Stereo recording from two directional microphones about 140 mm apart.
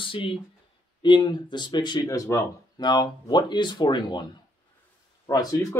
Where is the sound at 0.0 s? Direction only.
40° left (ahead or behind).